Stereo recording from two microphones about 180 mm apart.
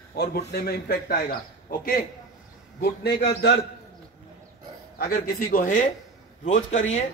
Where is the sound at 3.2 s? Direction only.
65° left (ahead or behind).